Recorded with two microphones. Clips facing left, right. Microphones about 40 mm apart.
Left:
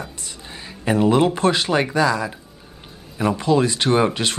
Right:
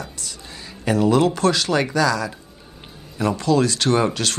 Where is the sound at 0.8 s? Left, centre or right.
Left.